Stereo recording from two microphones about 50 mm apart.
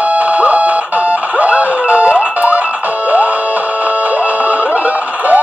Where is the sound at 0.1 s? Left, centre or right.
Right.